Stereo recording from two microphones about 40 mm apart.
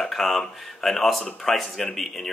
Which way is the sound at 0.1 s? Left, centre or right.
Centre.